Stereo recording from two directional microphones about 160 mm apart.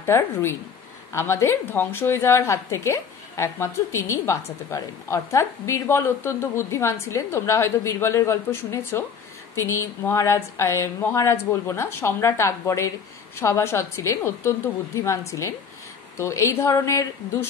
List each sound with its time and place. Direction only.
0.0 s a woman's voice: 15° left (ahead or behind)